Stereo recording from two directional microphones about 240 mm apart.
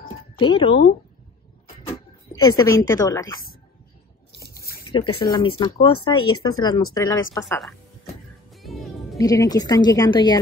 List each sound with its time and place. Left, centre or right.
0.4 s speech: left
2.4 s a woman's voice: centre
4.4 s a sound: left
5.2 s a woman's voice: centre
8.5 s music: centre
9.2 s a woman's voice: centre